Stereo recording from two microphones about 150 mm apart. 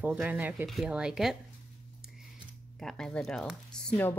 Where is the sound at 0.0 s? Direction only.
10° right (ahead or behind).